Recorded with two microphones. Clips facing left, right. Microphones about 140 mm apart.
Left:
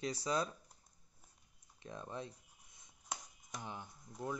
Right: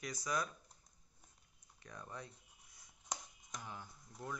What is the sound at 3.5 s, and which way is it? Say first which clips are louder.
Speech: left 3 dB; 20° left (ahead or behind).